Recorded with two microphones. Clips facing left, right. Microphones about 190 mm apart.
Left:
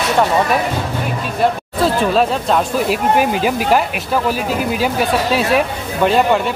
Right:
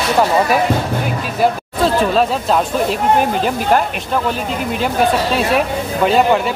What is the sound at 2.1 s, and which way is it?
Speech, centre (ahead or behind).